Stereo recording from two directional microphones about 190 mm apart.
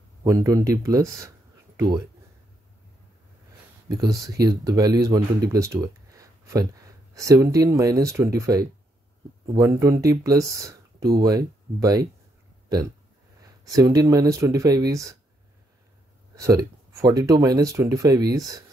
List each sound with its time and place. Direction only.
0.2 s speech: 15° right (ahead or behind)
4.0 s speech: 20° right (ahead or behind)
13.4 s speech: 20° right (ahead or behind)
16.3 s speech: 15° right (ahead or behind)